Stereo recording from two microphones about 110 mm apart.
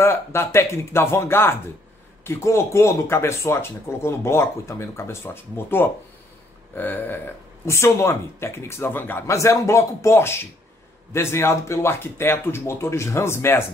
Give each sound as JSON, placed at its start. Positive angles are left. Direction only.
{"t": 0.0, "sound": "speech", "side_deg": 25}